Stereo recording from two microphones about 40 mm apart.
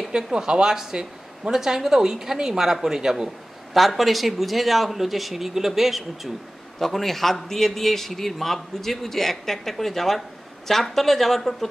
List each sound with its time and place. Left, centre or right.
0.2 s a woman's voice: centre
3.7 s a man's voice: centre